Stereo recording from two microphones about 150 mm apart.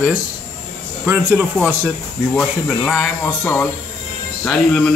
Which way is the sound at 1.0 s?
15° right (ahead or behind).